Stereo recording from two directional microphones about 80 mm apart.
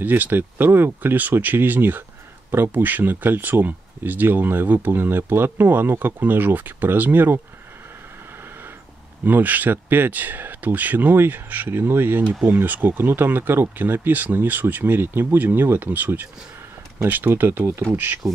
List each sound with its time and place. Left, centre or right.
0.0 s speech: right
9.2 s speech: right